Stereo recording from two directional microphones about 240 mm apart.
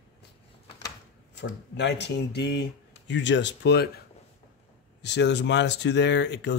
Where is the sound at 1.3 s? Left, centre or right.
Left.